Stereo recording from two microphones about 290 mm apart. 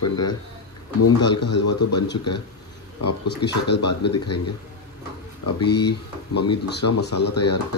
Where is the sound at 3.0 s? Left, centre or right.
Left.